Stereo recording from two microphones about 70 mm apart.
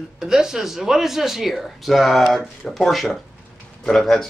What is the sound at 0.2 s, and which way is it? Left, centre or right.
A man's voice, centre.